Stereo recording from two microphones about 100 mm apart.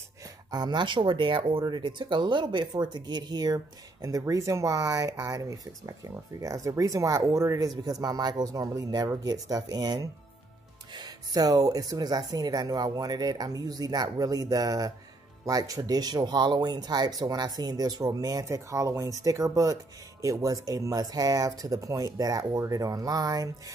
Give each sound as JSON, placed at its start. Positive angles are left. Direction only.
{"t": 0.5, "sound": "speech", "side_deg": -45}